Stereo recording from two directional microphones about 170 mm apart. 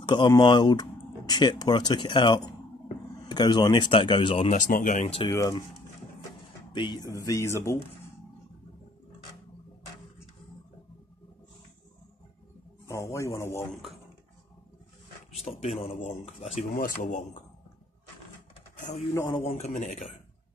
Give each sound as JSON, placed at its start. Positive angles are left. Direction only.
{"t": 0.0, "sound": "speech", "side_deg": 25}
{"t": 4.5, "sound": "speech", "side_deg": 50}
{"t": 5.3, "sound": "speech", "side_deg": 20}
{"t": 6.7, "sound": "speech", "side_deg": 25}
{"t": 12.8, "sound": "speech", "side_deg": 15}
{"t": 15.4, "sound": "speech", "side_deg": 35}
{"t": 16.7, "sound": "speech", "side_deg": 55}
{"t": 19.2, "sound": "speech", "side_deg": 30}
{"t": 19.5, "sound": "speech", "side_deg": 45}